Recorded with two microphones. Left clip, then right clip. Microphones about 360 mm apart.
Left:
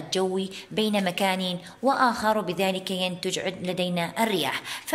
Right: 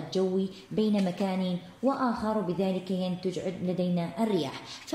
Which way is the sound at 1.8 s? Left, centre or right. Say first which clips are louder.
Left 7 dB; left.